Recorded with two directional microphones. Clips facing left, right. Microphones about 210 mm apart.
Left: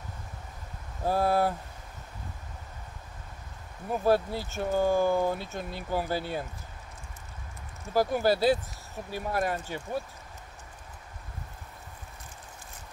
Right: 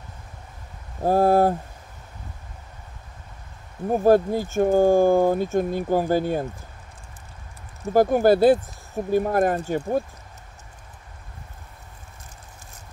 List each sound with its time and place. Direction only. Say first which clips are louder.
1.0 s speech: right 8 dB; 45° right (ahead or behind)
3.9 s speech: right 8 dB; 45° right (ahead or behind)
7.9 s speech: right 8 dB; 50° right (ahead or behind)